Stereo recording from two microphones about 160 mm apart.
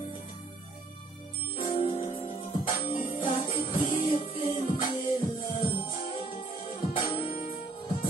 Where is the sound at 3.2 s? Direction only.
35° left (ahead or behind).